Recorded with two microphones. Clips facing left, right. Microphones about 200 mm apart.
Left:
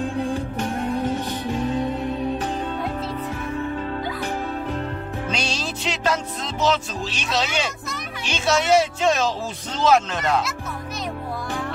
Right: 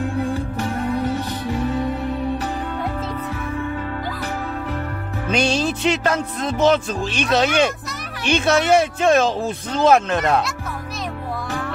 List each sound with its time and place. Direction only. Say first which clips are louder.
1.6 s music: right 1 dB; 15° left (ahead or behind)
5.3 s music: right 11 dB; 55° right (ahead or behind)
8.3 s speech: right 3 dB; 55° right (ahead or behind)